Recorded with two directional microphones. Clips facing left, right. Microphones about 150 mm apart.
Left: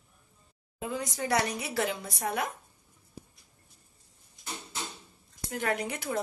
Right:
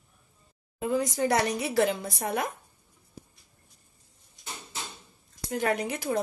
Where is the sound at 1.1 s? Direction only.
35° right (ahead or behind).